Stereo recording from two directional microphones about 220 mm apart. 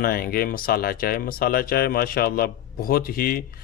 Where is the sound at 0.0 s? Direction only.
40° left (ahead or behind).